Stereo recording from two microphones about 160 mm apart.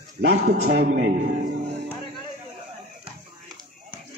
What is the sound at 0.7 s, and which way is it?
Speech, 75° right (ahead or behind).